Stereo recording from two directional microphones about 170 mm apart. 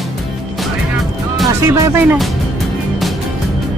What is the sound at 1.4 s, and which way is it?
Speech, 15° right (ahead or behind).